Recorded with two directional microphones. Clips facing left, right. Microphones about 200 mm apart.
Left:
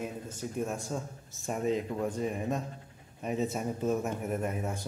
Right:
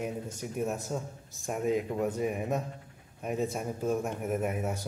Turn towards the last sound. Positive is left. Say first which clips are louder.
# right 2 dB
turn(degrees=-5)  # may be behind; listen again after turning